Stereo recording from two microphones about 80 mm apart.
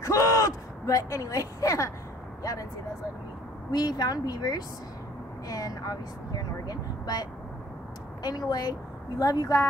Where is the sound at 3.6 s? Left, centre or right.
Left.